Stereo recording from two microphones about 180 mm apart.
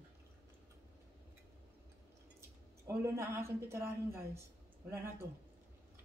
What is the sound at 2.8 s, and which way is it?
Speech, 15° right (ahead or behind).